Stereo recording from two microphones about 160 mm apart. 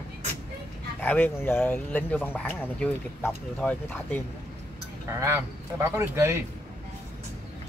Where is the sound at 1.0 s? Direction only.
10° left (ahead or behind).